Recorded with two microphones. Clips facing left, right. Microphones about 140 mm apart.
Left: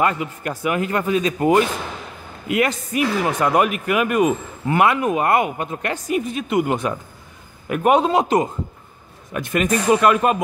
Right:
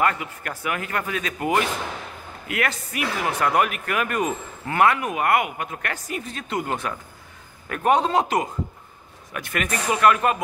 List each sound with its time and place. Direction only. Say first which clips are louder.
0.0 s a man's voice: left 3 dB; 20° left (ahead or behind)